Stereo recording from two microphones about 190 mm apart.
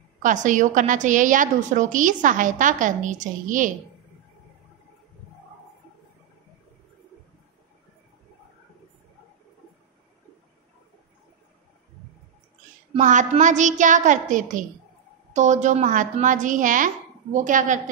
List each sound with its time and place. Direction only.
0.2 s a woman's voice: 40° right (ahead or behind)
12.9 s a woman's voice: 40° right (ahead or behind)